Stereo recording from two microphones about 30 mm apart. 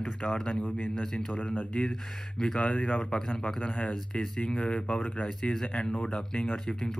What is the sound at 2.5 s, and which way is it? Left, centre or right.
Speech, left.